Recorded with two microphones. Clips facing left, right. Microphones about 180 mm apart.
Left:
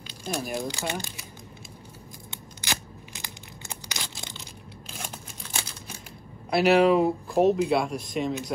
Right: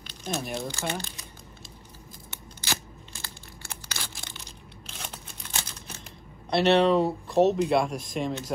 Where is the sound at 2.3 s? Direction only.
15° left (ahead or behind).